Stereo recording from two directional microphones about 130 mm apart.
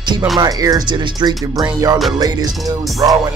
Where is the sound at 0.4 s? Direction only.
30° right (ahead or behind).